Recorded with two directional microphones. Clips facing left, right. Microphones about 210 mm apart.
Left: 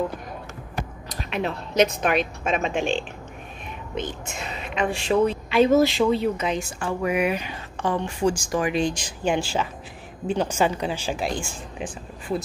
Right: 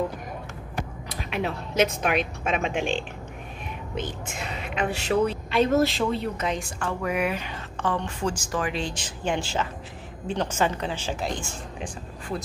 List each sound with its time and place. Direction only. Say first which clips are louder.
1.3 s speech: left 2 dB; 10° right (ahead or behind)
4.3 s a woman's voice: even; 55° right (ahead or behind)
4.8 s a woman's voice: left 3 dB; 5° right (ahead or behind); by 12.4 s 10° left (ahead or behind)